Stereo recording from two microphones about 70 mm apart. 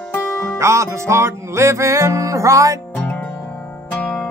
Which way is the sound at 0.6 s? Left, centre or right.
Right.